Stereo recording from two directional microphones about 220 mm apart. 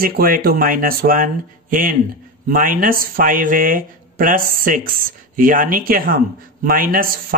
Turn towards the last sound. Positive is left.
turn(degrees=-40)  # may be behind; listen again after turning